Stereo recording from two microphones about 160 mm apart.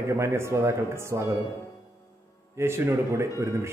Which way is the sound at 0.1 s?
15° right (ahead or behind).